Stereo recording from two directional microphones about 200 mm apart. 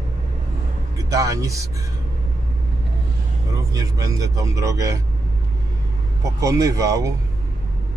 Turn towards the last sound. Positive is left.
turn(degrees=-15)  # may be behind; listen again after turning